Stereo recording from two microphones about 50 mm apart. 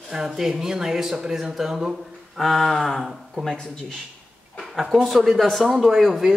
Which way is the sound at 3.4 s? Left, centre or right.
Centre.